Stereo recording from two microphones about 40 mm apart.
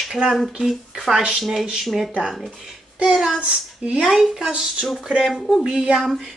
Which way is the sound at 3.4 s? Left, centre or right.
Right.